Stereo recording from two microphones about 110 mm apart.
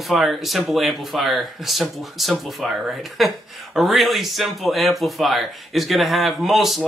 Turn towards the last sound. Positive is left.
turn(degrees=0)  # may be behind; listen again after turning